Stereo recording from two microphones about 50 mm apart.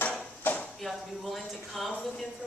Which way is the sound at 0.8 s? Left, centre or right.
Centre.